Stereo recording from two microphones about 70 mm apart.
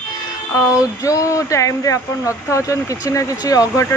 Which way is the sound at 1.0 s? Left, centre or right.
Left.